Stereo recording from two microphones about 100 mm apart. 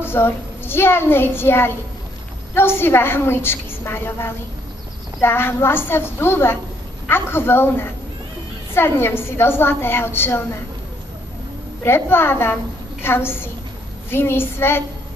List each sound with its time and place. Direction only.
0.0 s a child's voice: 25° left (ahead or behind)
11.8 s a woman's voice: 25° left (ahead or behind)